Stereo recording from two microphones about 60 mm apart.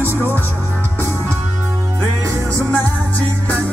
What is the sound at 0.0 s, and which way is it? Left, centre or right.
Music, right.